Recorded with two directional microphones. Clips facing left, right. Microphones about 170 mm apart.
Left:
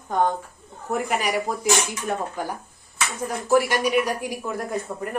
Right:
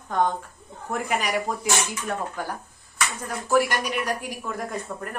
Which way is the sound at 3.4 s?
15° left (ahead or behind).